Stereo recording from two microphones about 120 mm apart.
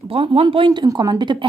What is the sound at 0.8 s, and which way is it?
Speech, 35° right (ahead or behind).